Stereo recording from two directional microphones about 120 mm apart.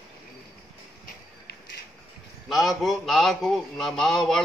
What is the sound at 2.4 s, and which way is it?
A man's voice, centre (ahead or behind).